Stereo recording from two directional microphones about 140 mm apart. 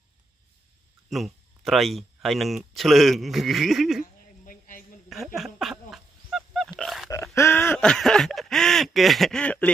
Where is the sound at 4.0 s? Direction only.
80° left.